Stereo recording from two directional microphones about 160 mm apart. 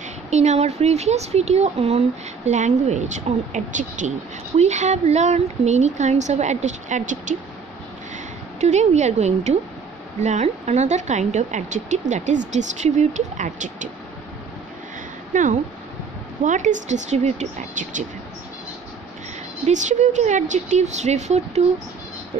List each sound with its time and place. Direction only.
0.3 s speech: 45° right (ahead or behind)
8.5 s speech: 45° right (ahead or behind)
15.3 s speech: 50° right (ahead or behind)
19.6 s speech: 50° right (ahead or behind)